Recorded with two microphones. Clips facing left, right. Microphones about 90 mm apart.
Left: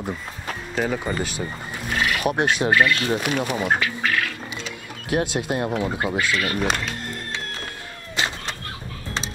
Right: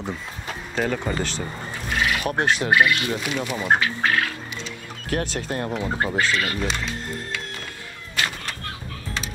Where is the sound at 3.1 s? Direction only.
50° left (ahead or behind).